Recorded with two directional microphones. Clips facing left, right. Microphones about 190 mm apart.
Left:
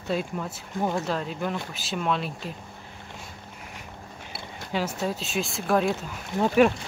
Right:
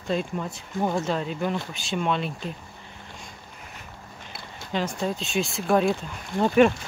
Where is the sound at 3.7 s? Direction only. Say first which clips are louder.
Left 2 dB; 10° left (ahead or behind).